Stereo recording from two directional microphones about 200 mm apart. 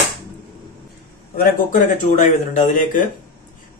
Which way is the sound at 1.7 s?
40° left (ahead or behind).